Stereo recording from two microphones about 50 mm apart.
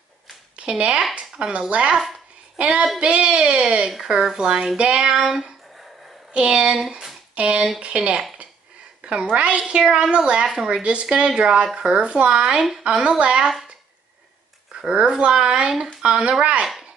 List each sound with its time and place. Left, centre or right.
0.6 s a woman's voice: right; by 5.9 s centre
6.3 s speech: centre
7.3 s a woman's voice: right
14.8 s a woman's voice: centre